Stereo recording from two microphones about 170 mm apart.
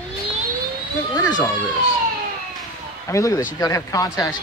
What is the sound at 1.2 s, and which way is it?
Speech, 25° left (ahead or behind).